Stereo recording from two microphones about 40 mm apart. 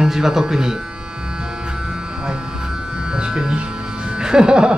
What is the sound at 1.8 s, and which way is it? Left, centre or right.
Electric shaver, right.